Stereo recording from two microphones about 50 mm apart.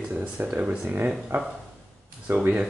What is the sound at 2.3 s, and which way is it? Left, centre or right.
Speech, right.